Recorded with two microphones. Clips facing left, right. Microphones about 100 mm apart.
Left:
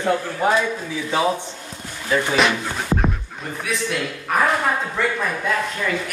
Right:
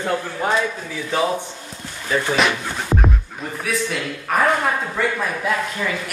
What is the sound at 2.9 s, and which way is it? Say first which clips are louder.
Music: even; 5° right (ahead or behind).